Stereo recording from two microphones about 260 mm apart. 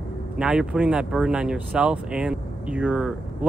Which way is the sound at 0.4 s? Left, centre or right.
Centre.